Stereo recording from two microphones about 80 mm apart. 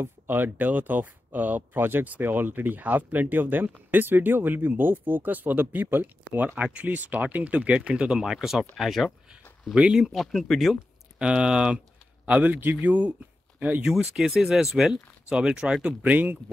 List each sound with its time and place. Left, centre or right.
0.0 s speech: right; by 10.8 s centre
11.1 s speech: centre
13.8 s speech: centre
16.0 s speech: right